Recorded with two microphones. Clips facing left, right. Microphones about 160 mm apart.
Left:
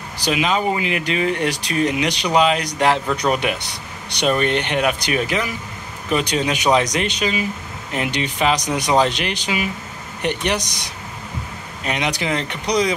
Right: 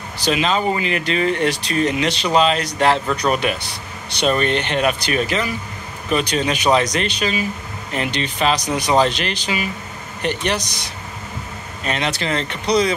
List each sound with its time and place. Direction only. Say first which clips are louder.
0.2 s speech: right 1 dB; 10° left (ahead or behind)